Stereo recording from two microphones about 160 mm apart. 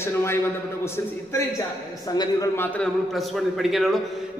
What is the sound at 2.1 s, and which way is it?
Speech, 25° left (ahead or behind).